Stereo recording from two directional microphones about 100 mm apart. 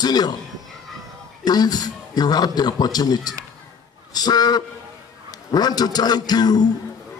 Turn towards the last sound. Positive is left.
turn(degrees=45)  # may be behind; listen again after turning